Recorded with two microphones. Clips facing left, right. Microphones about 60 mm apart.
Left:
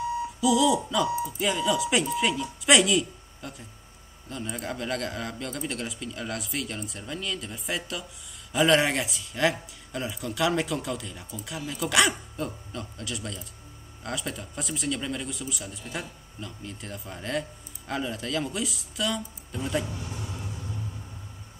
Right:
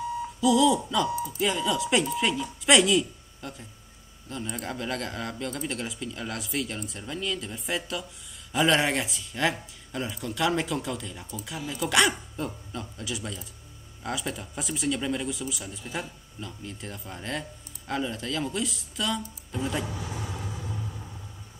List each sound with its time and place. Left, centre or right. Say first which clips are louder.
0.4 s a man's voice: right 1 dB; centre
20.2 s vehicle: right 2 dB; right